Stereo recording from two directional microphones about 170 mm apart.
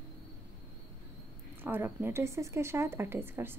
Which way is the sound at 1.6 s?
10° right (ahead or behind).